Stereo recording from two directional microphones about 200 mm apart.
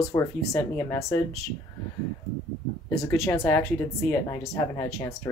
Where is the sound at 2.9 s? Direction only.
15° left (ahead or behind).